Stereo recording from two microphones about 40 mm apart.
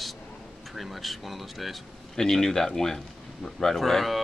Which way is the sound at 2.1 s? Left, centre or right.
Centre.